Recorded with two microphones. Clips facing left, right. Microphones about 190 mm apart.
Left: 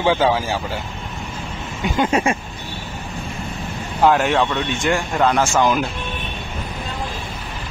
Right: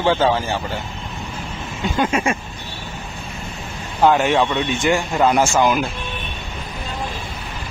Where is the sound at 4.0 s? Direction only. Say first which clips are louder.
Right 1 dB; centre (ahead or behind).